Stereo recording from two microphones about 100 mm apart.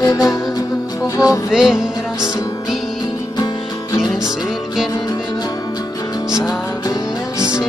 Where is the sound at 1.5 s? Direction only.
5° right (ahead or behind).